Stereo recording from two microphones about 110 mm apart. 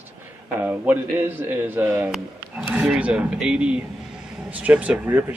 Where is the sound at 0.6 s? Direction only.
20° right (ahead or behind).